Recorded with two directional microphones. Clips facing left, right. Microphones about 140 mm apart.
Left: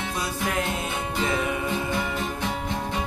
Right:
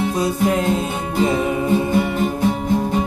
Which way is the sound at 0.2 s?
25° right (ahead or behind).